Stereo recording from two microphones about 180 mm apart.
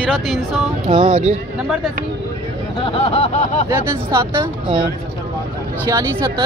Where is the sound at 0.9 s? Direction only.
25° right (ahead or behind).